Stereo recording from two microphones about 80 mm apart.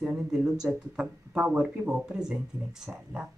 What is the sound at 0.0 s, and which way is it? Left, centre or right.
Speech, centre.